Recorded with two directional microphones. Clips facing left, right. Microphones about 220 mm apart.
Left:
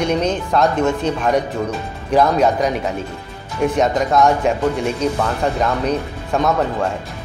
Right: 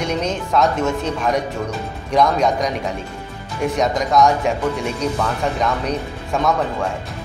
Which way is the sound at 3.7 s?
Centre (ahead or behind).